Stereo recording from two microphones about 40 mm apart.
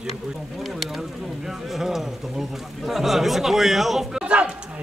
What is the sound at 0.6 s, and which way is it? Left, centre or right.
Speech, centre.